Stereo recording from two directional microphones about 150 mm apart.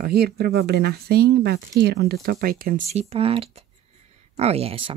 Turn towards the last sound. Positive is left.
turn(degrees=-40)  # may be behind; listen again after turning